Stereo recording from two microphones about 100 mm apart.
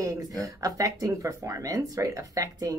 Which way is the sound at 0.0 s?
35° right (ahead or behind).